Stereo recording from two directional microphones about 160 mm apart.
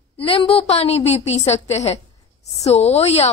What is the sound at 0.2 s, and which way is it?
A woman's voice, 35° left (ahead or behind).